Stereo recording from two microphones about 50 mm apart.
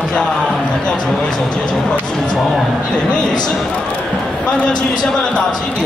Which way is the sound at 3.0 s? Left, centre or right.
Centre.